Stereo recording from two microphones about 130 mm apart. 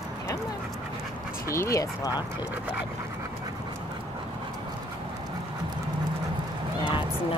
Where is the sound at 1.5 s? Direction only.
25° left (ahead or behind).